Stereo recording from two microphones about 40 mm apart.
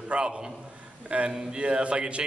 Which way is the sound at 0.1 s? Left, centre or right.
Right.